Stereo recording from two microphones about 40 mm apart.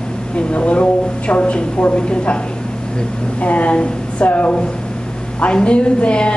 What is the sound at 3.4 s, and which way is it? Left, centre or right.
Speech, left.